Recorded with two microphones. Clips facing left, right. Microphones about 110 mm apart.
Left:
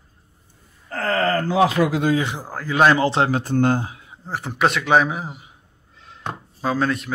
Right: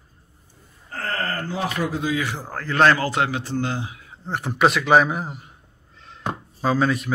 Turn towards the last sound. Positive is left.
turn(degrees=0)  # may be behind; listen again after turning